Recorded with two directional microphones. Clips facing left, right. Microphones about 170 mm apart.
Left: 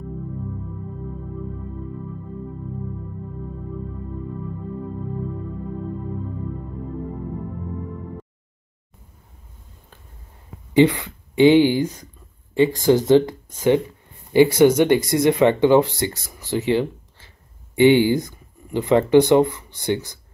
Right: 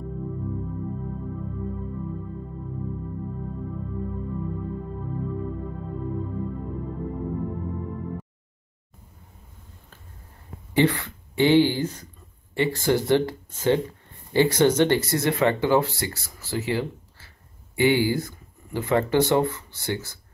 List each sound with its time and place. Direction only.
10.7 s speech: 15° left (ahead or behind)